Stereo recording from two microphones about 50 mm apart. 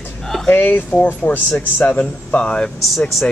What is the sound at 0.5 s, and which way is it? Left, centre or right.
Speech, left.